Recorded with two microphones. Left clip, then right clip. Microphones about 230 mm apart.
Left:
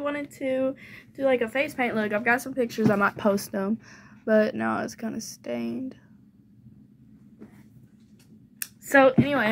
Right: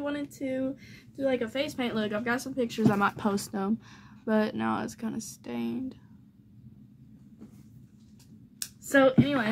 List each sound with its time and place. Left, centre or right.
0.0 s speech: centre
2.6 s speech: right
3.2 s speech: centre
4.2 s speech: centre
8.8 s speech: centre
9.2 s speech: centre